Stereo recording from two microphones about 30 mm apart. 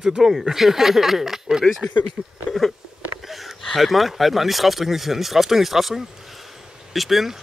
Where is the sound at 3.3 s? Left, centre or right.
Centre.